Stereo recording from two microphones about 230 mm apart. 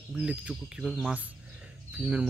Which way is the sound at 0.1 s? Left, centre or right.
Centre.